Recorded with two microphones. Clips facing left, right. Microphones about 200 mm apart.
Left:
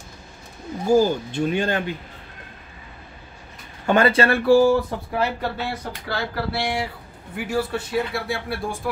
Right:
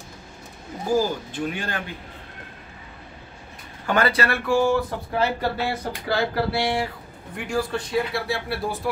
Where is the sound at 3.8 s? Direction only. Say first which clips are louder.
Left 4 dB; 25° left (ahead or behind).